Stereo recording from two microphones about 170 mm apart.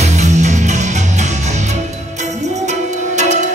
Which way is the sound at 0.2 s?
45° right (ahead or behind).